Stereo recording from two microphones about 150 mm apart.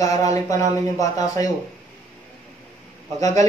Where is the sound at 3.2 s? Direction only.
25° left (ahead or behind).